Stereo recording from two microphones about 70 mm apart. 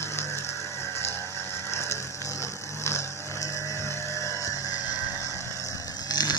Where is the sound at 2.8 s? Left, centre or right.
Left.